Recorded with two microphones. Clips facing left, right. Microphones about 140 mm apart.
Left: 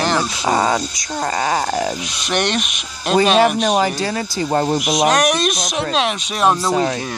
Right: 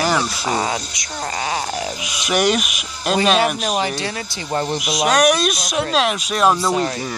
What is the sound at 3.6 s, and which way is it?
Speech, 40° left (ahead or behind).